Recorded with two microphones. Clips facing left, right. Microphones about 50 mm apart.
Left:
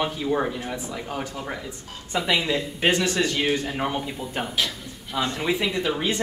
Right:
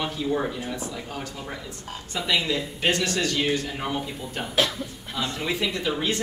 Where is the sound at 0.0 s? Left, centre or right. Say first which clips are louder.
Left 2 dB; centre.